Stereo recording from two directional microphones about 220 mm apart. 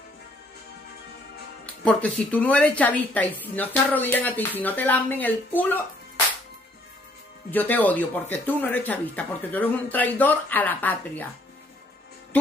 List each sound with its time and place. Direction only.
1.9 s a woman's voice: 5° left (ahead or behind)
7.5 s a woman's voice: 10° left (ahead or behind)